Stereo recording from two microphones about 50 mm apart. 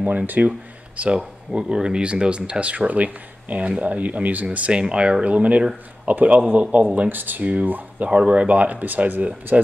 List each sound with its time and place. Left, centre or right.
0.4 s speech: right
1.5 s speech: centre; by 8.1 s right
8.1 s speech: right
9.5 s speech: centre